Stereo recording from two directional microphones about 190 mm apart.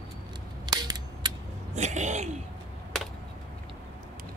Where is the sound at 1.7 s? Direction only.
40° right (ahead or behind).